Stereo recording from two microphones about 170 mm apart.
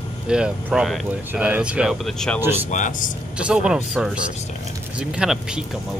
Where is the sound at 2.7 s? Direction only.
50° left (ahead or behind).